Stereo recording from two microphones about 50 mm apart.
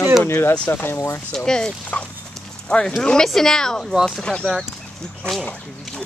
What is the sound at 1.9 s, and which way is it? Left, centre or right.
Speech, left.